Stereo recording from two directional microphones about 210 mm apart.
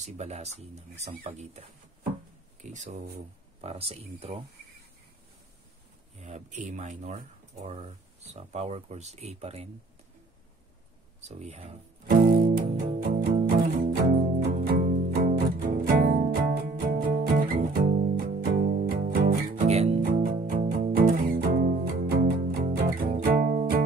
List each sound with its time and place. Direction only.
0.0 s speech: 30° right (ahead or behind)
2.6 s speech: 35° right (ahead or behind)
6.2 s speech: 35° right (ahead or behind)
11.2 s speech: 30° right (ahead or behind)
12.3 s music: 40° right (ahead or behind)
19.5 s music: 30° right (ahead or behind)